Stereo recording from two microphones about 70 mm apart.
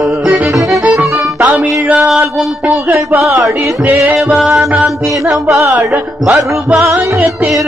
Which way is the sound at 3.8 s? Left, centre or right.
Right.